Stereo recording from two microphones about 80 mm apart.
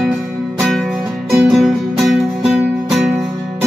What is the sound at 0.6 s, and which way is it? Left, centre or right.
Music, centre.